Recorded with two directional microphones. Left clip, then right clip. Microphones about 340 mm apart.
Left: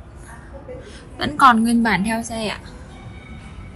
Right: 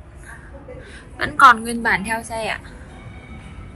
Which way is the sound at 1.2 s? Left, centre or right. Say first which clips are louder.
Right 2 dB; centre.